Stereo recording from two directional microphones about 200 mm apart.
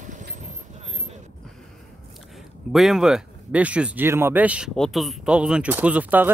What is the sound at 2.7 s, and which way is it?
Speech, centre (ahead or behind).